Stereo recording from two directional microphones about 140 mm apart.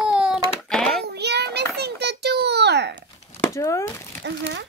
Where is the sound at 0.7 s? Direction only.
5° left (ahead or behind).